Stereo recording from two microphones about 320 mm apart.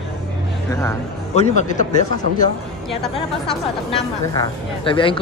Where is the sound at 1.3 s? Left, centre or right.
Left.